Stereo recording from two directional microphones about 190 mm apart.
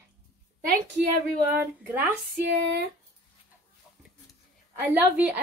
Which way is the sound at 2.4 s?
60° right (ahead or behind).